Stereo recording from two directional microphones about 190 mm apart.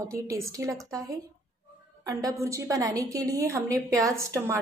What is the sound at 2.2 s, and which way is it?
A woman's voice, 15° right (ahead or behind).